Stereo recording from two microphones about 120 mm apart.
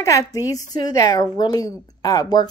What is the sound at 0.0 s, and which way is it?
Speech, 25° left (ahead or behind).